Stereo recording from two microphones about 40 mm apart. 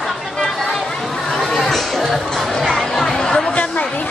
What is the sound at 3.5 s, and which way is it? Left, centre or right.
Chatter, left.